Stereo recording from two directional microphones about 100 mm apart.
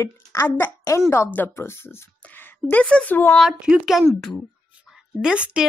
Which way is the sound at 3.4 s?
5° right (ahead or behind).